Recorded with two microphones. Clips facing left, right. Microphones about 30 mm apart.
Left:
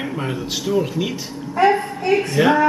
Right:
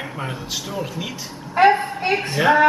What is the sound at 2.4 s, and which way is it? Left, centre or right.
Speech, centre.